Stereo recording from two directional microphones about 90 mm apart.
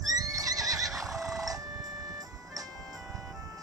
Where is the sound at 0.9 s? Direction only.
Centre (ahead or behind).